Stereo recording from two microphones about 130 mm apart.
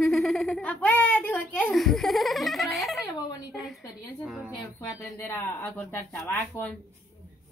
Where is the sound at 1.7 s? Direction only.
Centre (ahead or behind).